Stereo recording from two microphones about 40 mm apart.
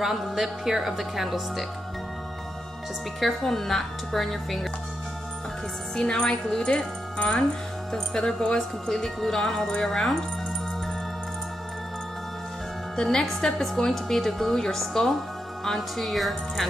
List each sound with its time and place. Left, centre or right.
0.0 s speech: centre
3.2 s speech: centre
5.9 s a woman's voice: centre
7.9 s a woman's voice: centre
12.9 s a woman's voice: centre